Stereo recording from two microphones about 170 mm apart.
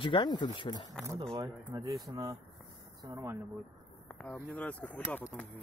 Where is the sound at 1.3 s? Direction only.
20° right (ahead or behind).